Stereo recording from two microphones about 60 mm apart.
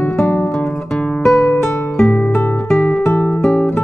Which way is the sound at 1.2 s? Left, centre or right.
Centre.